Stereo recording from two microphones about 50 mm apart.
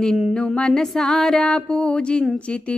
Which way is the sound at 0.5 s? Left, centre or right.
Centre.